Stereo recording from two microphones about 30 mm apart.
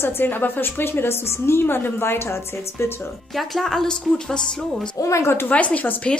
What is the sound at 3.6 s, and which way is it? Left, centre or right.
Speech, centre.